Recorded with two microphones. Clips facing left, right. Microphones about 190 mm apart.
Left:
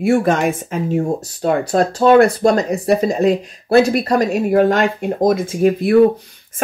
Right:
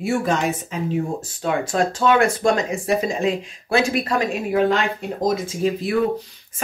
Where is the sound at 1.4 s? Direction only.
40° left (ahead or behind).